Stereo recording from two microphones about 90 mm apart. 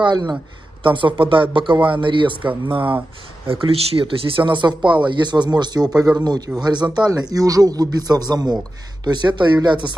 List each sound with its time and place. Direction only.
0.0 s speech: 55° right (ahead or behind)
0.8 s a man's voice: 65° right (ahead or behind)
3.4 s speech: 85° right; by 9.9 s 55° right (ahead or behind)